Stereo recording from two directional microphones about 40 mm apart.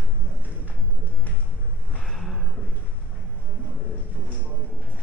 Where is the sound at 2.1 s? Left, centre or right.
Centre.